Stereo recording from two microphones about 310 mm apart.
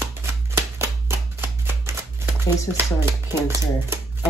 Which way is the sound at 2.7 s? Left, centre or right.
Centre.